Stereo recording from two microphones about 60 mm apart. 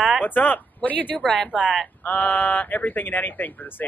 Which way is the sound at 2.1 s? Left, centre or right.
Left.